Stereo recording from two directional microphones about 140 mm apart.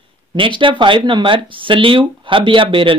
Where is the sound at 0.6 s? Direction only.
35° right (ahead or behind).